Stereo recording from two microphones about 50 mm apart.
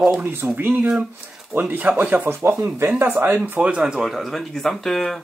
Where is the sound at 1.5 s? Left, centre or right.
Right.